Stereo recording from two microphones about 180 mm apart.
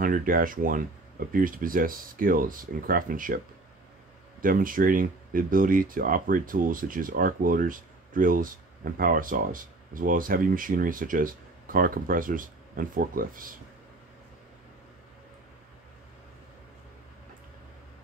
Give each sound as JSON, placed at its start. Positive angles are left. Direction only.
{"t": 0.0, "sound": "speech", "side_deg": -50}
{"t": 4.4, "sound": "speech", "side_deg": -50}